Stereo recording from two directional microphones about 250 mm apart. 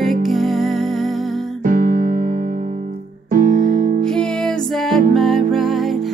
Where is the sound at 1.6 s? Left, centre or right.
Right.